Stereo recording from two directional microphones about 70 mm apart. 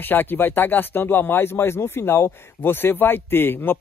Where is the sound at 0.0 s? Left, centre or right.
Left.